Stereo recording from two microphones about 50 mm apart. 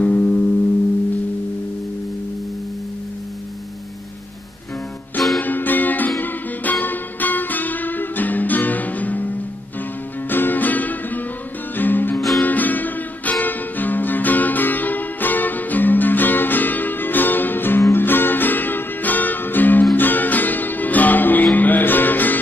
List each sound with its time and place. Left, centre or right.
0.0 s music: left
5.4 s music: left